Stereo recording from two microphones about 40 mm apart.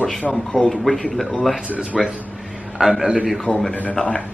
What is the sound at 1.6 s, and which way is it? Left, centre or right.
Speech, right.